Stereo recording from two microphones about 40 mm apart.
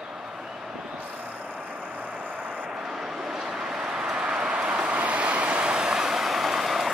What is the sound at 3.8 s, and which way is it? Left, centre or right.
Vehicle, centre.